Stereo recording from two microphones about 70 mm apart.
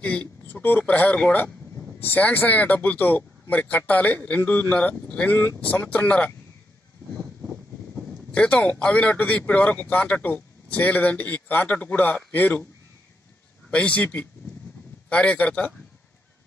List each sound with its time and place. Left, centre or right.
0.0 s speech: centre
0.6 s a man's voice: left
8.3 s a man's voice: centre
13.7 s a man's voice: centre